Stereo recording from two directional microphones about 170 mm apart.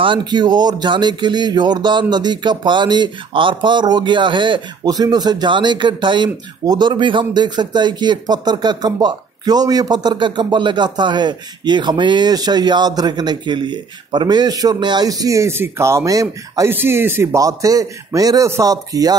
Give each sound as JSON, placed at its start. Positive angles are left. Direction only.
{"t": 0.0, "sound": "speech", "side_deg": -30}